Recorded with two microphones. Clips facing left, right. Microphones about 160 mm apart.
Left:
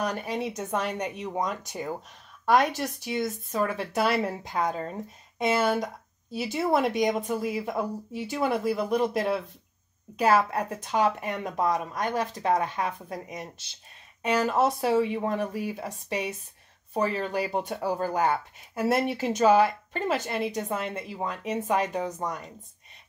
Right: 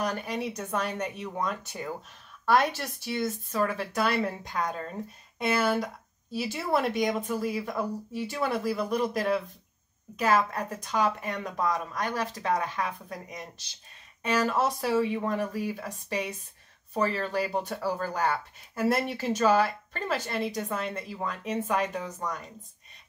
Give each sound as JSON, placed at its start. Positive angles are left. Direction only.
{"t": 0.0, "sound": "speech", "side_deg": 20}
{"t": 14.5, "sound": "speech", "side_deg": 20}